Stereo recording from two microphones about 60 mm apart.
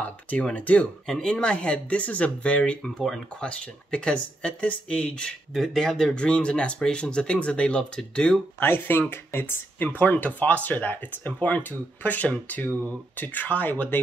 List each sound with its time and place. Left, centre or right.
0.0 s speech: left
5.5 s speech: centre
6.1 s speech: centre
8.5 s speech: left
9.8 s speech: left